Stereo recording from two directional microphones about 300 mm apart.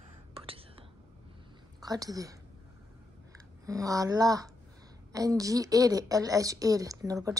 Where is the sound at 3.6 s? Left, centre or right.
Centre.